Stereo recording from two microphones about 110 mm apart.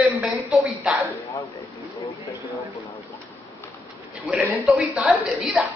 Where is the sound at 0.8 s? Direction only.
Centre (ahead or behind).